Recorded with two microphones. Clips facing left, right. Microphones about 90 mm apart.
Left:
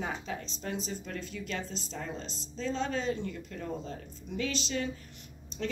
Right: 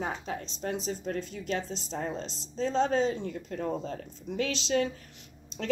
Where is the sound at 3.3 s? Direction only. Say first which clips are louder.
Right 5 dB; 55° right (ahead or behind).